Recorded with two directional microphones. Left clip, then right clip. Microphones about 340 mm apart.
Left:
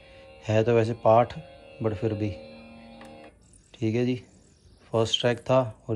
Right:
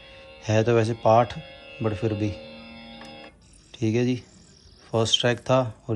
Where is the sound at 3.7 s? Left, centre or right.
Centre.